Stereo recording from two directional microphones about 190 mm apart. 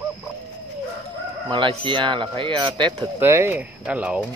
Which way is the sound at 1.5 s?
25° right (ahead or behind).